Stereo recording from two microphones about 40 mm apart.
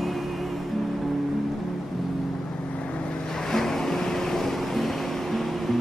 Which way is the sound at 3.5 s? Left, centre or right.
Centre.